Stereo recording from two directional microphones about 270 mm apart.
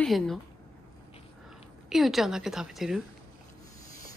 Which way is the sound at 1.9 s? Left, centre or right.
Centre.